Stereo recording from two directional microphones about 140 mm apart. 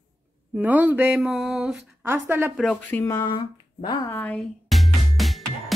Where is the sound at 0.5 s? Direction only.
10° right (ahead or behind).